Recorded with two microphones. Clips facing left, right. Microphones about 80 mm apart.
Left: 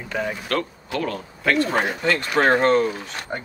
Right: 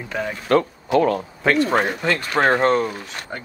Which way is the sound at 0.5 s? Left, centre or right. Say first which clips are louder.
Right 8 dB; right.